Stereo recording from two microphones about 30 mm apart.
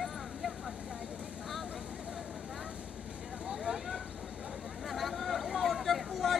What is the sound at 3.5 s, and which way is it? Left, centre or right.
Vehicle, right.